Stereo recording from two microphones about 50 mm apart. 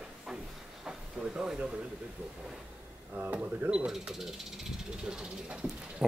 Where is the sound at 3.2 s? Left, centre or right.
Right.